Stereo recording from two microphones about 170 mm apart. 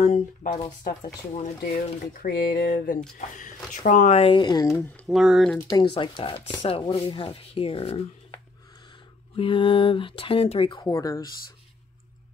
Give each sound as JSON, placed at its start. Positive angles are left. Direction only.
{"t": 0.0, "sound": "speech", "side_deg": 40}
{"t": 0.7, "sound": "speech", "side_deg": 20}
{"t": 1.7, "sound": "speech", "side_deg": 65}
{"t": 5.0, "sound": "speech", "side_deg": 0}
{"t": 5.7, "sound": "speech", "side_deg": 25}
{"t": 9.4, "sound": "speech", "side_deg": 30}
{"t": 10.9, "sound": "speech", "side_deg": 20}